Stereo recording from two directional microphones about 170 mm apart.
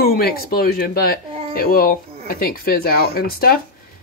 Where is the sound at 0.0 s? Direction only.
60° left (ahead or behind).